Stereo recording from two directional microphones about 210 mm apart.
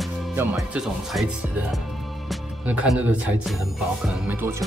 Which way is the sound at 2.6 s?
5° right (ahead or behind).